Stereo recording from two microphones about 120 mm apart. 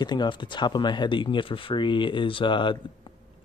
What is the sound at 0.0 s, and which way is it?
Speech, 35° left (ahead or behind).